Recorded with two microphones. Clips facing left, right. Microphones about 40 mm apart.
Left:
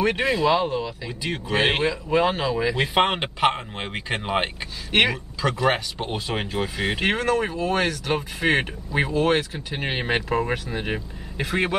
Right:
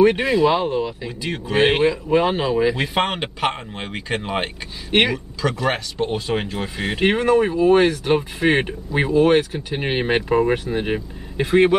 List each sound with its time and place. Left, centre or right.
0.2 s speech: centre
0.7 s speech: centre
1.0 s speech: centre
2.8 s speech: centre
7.0 s speech: centre